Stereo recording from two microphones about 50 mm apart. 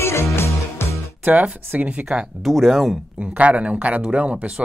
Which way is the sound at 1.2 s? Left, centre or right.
Right.